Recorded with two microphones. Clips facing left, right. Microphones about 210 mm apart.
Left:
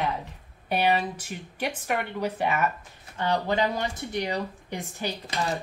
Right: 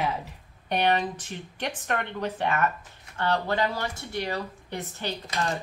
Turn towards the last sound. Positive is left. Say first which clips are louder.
# even
turn(degrees=10)  # may be behind; listen again after turning